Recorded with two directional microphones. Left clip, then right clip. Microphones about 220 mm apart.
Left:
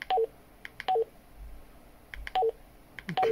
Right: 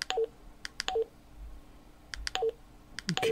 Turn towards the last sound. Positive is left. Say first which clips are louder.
# left 5 dB
turn(degrees=-20)  # may be behind; listen again after turning